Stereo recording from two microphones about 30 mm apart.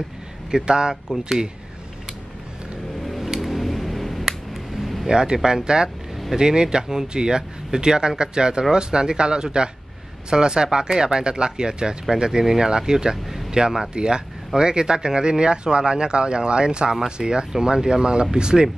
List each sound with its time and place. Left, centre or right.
0.5 s speech: right
1.0 s speech: centre
3.3 s a sound: centre
5.0 s speech: right
17.5 s speech: centre